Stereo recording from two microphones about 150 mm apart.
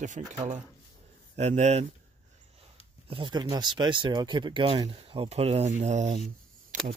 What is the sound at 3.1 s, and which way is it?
Speech, 30° right (ahead or behind).